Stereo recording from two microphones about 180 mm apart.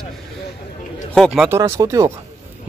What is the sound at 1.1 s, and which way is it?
Speech, centre (ahead or behind).